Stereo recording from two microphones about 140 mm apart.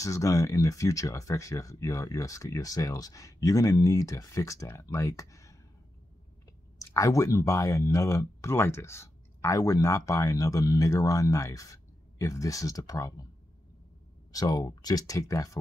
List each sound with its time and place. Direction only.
0.0 s speech: 20° left (ahead or behind)
6.8 s speech: 20° left (ahead or behind)
14.3 s speech: 25° left (ahead or behind)